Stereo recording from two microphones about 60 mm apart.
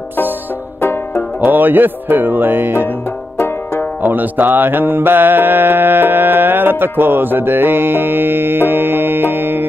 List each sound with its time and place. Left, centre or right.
0.7 s music: left
1.4 s mantra: right
3.3 s music: left
4.0 s mantra: right